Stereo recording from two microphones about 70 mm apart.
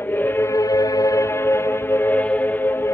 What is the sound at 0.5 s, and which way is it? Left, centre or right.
Music, left.